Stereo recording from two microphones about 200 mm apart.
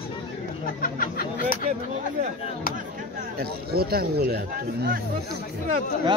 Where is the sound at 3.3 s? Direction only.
50° right (ahead or behind).